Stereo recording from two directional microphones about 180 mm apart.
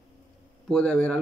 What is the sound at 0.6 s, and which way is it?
Speech, 5° left (ahead or behind).